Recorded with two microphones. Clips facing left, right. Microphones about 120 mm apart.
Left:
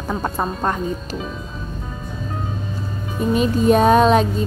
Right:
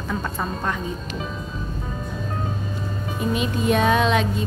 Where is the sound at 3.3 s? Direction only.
40° left (ahead or behind).